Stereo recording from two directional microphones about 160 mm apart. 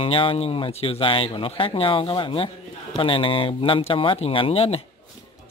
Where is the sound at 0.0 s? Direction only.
35° left (ahead or behind).